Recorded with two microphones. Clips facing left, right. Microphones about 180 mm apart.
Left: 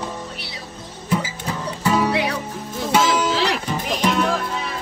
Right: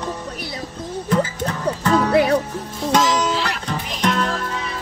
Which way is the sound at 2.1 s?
45° right (ahead or behind).